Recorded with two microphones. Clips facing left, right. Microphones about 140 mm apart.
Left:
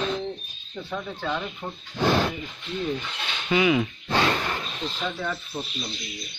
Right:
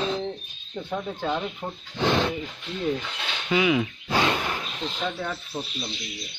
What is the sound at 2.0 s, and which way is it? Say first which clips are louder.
Speech: left 1 dB; 5° left (ahead or behind).